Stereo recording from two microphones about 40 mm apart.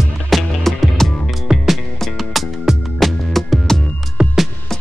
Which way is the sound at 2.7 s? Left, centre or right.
Centre.